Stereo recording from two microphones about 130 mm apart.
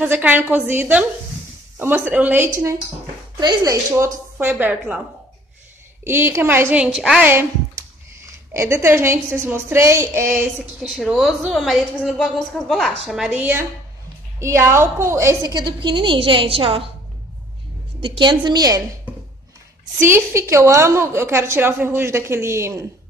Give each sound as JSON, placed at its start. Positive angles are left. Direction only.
{"t": 0.0, "sound": "a woman's voice", "side_deg": -10}
{"t": 4.4, "sound": "a woman's voice", "side_deg": -15}
{"t": 6.0, "sound": "a woman's voice", "side_deg": -20}
{"t": 7.2, "sound": "a woman's voice", "side_deg": -20}
{"t": 10.6, "sound": "a woman's voice", "side_deg": -5}
{"t": 18.0, "sound": "a woman's voice", "side_deg": -40}
{"t": 20.0, "sound": "a woman's voice", "side_deg": -15}